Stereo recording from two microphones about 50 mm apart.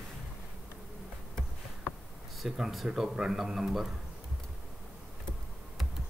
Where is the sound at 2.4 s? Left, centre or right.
Centre.